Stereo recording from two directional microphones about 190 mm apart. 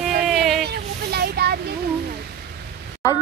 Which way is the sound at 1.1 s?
55° right (ahead or behind).